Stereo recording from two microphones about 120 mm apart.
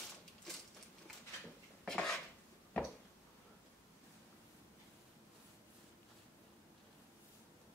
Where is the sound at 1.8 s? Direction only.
5° left (ahead or behind).